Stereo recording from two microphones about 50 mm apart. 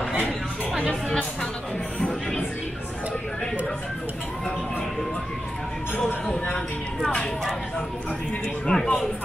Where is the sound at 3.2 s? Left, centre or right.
Centre.